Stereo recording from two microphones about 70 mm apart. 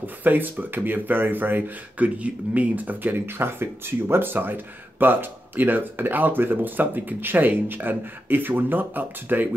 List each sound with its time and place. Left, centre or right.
0.0 s speech: right